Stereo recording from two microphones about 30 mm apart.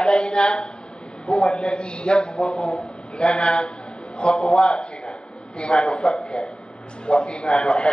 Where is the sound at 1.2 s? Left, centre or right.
Left.